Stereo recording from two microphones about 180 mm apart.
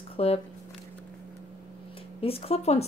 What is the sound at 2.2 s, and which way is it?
Speech, 35° left (ahead or behind).